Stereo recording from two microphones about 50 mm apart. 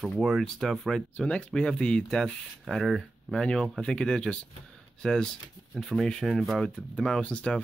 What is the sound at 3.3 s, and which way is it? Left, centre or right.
Speech, centre.